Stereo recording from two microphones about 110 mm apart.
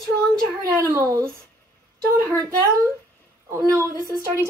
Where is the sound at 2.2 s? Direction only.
30° right (ahead or behind).